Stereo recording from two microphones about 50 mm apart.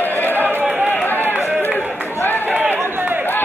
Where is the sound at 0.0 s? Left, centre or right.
Left.